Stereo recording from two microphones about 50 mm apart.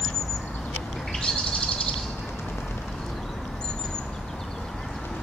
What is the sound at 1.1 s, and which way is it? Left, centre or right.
Owl, centre.